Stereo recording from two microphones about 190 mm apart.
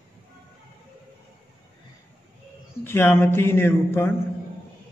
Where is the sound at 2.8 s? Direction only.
10° left (ahead or behind).